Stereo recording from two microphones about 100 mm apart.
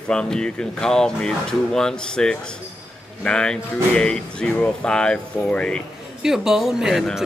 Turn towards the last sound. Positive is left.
turn(degrees=-5)  # may be behind; listen again after turning